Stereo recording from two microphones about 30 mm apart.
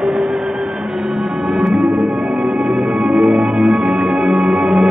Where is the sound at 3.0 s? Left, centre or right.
Right.